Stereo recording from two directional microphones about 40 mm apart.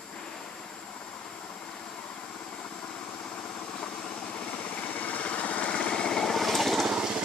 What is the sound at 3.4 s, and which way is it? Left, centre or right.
Vehicle, left.